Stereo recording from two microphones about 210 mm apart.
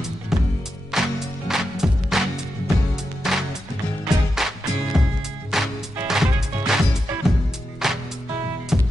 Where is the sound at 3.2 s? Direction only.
Centre (ahead or behind).